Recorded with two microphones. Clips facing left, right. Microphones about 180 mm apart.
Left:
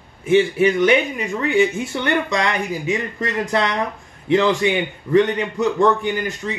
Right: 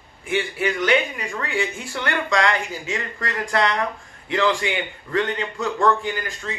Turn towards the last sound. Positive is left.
turn(degrees=20)  # may be behind; listen again after turning